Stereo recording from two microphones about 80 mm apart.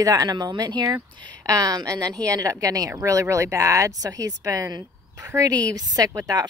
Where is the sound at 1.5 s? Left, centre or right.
Right.